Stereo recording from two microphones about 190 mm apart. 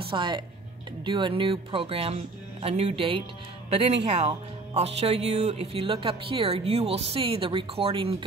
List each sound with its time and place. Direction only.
0.1 s speech: 25° right (ahead or behind)